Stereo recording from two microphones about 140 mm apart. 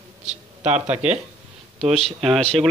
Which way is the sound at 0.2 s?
55° right (ahead or behind).